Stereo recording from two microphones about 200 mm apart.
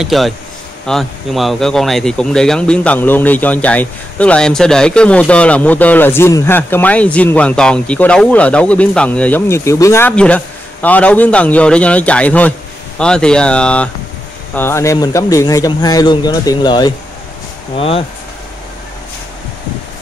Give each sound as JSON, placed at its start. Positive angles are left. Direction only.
{"t": 0.0, "sound": "speech", "side_deg": 0}